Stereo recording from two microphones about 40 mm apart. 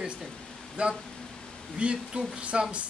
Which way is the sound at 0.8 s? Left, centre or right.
Right.